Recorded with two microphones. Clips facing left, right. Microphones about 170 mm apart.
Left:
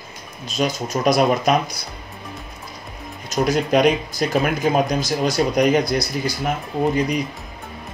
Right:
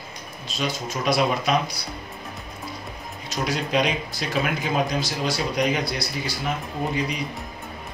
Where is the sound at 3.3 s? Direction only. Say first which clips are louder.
Left 7 dB; 45° left (ahead or behind).